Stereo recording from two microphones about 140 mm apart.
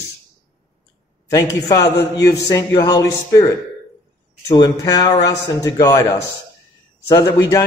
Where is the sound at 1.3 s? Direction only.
25° left (ahead or behind).